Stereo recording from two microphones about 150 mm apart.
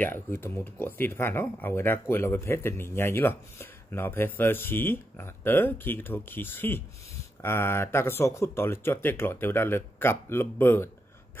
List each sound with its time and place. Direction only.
0.0 s speech: 15° left (ahead or behind)